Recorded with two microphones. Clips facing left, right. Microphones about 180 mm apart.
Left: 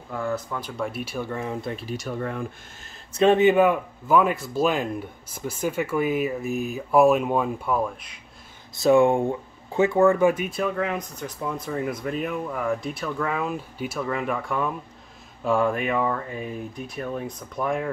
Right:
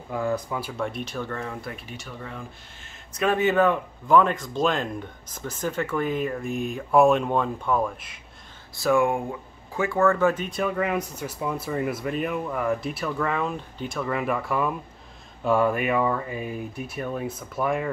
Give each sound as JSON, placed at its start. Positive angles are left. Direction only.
{"t": 0.1, "sound": "speech", "side_deg": -15}
{"t": 2.0, "sound": "speech", "side_deg": 50}
{"t": 3.1, "sound": "speech", "side_deg": 25}
{"t": 8.7, "sound": "speech", "side_deg": 20}
{"t": 10.5, "sound": "speech", "side_deg": 0}